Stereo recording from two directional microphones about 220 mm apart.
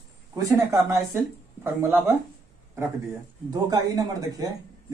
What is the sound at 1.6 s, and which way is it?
Speech, 10° right (ahead or behind).